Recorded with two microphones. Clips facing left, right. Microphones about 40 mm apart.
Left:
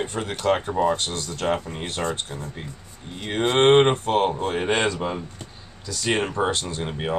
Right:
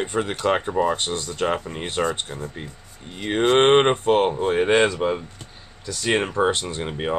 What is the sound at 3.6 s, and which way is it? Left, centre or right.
Speech, centre.